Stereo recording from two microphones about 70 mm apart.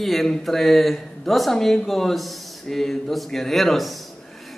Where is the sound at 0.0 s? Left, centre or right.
Centre.